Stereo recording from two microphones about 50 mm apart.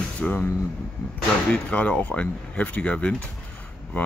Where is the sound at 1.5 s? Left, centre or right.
Left.